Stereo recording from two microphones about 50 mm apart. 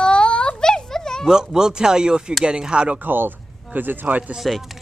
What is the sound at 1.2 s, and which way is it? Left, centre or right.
Speech, centre.